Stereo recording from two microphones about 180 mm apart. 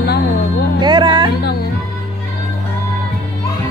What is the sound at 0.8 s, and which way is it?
Speech, 25° right (ahead or behind).